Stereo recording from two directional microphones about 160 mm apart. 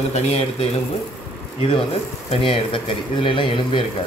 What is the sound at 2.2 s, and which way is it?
Speech, 35° left (ahead or behind).